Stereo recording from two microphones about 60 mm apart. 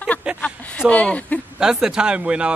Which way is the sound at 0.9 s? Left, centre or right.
Left.